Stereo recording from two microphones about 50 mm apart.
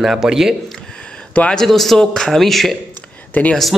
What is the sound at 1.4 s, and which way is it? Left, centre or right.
Speech, left.